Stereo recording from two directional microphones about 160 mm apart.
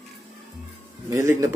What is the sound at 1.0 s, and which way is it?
Speech, 20° right (ahead or behind).